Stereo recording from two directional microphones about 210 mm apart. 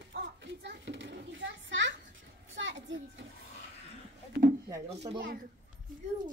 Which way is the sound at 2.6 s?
60° right (ahead or behind).